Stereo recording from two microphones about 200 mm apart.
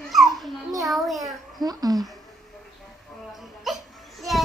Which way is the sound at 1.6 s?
20° right (ahead or behind).